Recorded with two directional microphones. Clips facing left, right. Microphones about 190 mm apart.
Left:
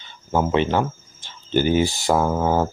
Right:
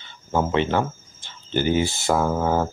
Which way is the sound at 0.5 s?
15° left (ahead or behind).